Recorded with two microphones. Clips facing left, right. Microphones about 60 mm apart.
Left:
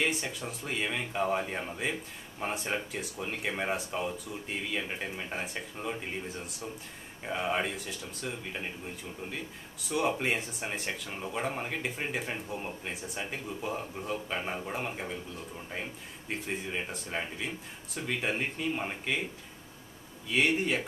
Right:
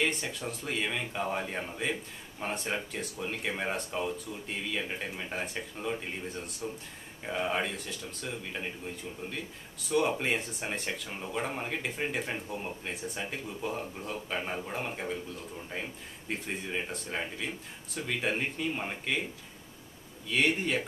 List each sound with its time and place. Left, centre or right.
0.0 s speech: centre
9.8 s speech: centre
20.2 s speech: centre